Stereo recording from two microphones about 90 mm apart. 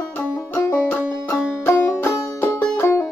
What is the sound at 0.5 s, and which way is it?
Music, 25° left (ahead or behind).